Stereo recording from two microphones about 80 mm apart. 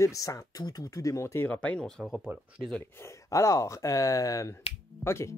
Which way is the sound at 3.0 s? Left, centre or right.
Left.